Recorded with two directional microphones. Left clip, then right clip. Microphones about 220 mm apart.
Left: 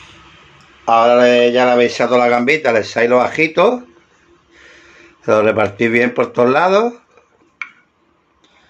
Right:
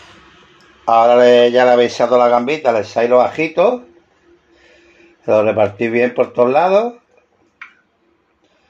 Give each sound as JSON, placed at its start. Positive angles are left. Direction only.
{"t": 0.8, "sound": "speech", "side_deg": 0}
{"t": 2.0, "sound": "speech", "side_deg": 10}
{"t": 5.2, "sound": "speech", "side_deg": 20}